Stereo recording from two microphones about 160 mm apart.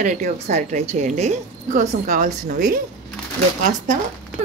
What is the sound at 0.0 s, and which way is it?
A woman's voice, 45° right (ahead or behind).